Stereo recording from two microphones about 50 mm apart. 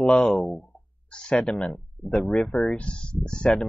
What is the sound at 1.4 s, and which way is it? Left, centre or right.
Speech, left.